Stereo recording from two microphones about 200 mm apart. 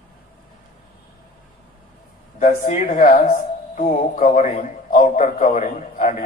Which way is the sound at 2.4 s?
40° left (ahead or behind).